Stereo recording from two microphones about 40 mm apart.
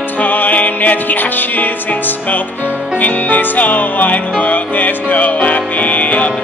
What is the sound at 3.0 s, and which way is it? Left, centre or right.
Music, left.